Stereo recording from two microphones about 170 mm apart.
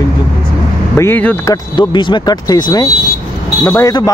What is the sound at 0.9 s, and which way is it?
Speech, 15° left (ahead or behind).